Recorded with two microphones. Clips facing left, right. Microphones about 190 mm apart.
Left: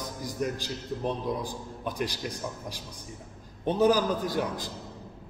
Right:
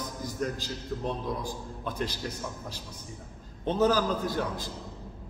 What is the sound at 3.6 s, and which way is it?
Speech, 15° left (ahead or behind).